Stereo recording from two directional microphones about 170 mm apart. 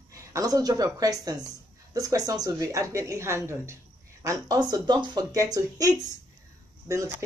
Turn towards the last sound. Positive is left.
turn(degrees=-20)  # may be behind; listen again after turning